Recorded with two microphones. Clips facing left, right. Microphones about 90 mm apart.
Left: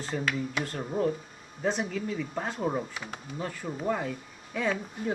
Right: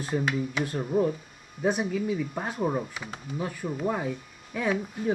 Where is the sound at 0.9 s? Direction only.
30° left (ahead or behind).